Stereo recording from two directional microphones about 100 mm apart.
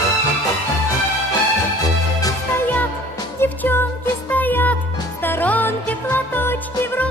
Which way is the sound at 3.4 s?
25° left (ahead or behind).